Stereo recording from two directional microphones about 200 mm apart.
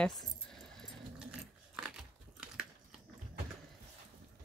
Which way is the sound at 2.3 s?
5° right (ahead or behind).